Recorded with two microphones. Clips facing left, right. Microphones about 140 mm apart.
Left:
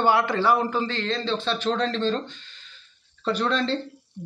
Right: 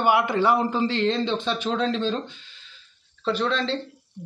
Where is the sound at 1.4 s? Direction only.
10° right (ahead or behind).